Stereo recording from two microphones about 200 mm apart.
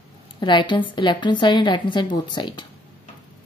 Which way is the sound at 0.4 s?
25° left (ahead or behind).